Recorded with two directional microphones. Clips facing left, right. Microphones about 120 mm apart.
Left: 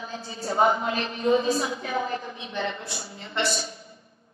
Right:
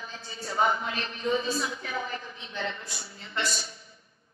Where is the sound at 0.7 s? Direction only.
20° left (ahead or behind).